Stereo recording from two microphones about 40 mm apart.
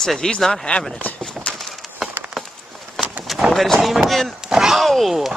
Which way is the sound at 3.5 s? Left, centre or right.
Centre.